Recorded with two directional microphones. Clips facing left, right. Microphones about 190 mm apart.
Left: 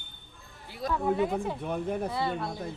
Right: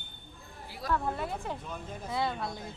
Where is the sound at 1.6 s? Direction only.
65° left (ahead or behind).